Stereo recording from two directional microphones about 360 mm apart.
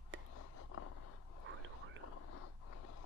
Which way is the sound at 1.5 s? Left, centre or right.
Right.